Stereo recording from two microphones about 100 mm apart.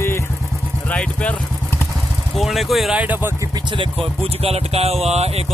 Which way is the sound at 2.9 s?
15° right (ahead or behind).